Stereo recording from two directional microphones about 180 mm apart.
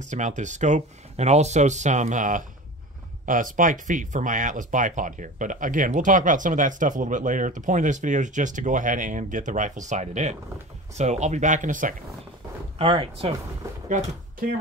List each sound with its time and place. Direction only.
0.0 s speech: 45° right (ahead or behind)
12.7 s speech: 30° right (ahead or behind)
13.8 s speech: 40° right (ahead or behind)